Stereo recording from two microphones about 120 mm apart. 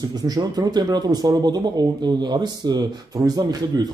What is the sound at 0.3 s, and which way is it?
Speech, 35° right (ahead or behind).